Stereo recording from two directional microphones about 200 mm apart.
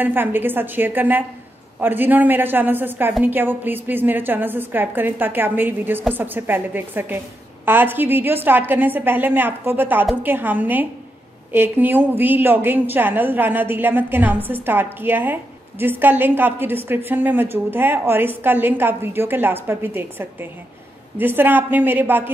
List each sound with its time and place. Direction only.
0.0 s a woman's voice: 10° right (ahead or behind)